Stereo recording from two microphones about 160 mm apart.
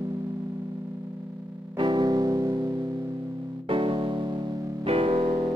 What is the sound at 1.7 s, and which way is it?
Music, 30° right (ahead or behind).